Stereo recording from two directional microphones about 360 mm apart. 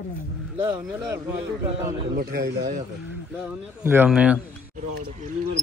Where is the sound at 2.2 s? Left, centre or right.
Right.